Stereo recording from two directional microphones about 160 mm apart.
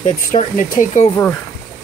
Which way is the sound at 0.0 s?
50° left (ahead or behind).